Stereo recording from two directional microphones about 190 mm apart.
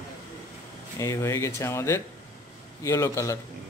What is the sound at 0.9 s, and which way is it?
Speech, 15° left (ahead or behind).